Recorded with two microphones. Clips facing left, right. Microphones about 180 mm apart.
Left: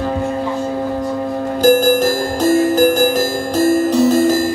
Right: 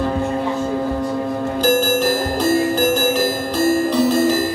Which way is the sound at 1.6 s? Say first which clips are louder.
Left 6 dB; 45° left (ahead or behind).